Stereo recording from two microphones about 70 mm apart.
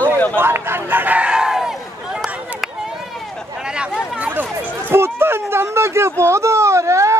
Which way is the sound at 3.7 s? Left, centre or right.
Centre.